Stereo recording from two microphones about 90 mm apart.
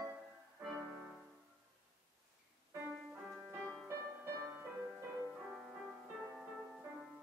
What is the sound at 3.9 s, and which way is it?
Music, 35° right (ahead or behind).